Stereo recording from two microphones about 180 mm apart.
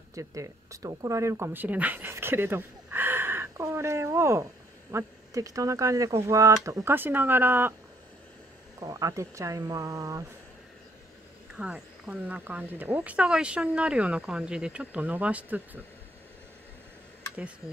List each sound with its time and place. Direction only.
0.1 s speech: 20° right (ahead or behind)
8.7 s speech: 20° right (ahead or behind)
11.5 s speech: 5° right (ahead or behind)